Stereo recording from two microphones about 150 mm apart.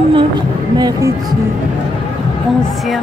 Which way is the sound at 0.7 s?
25° right (ahead or behind).